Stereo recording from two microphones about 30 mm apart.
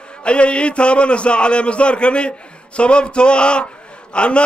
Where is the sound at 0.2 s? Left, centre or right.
Left.